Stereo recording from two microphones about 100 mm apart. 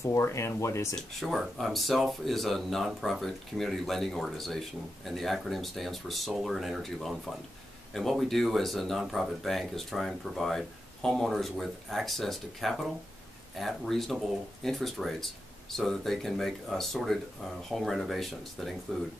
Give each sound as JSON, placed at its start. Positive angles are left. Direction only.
{"t": 0.0, "sound": "speech", "side_deg": 30}
{"t": 0.9, "sound": "speech", "side_deg": 5}